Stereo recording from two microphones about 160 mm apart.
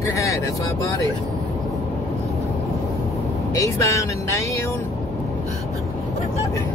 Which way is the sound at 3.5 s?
20° left (ahead or behind).